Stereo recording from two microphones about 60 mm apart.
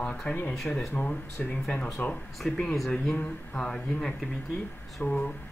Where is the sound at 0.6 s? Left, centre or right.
Centre.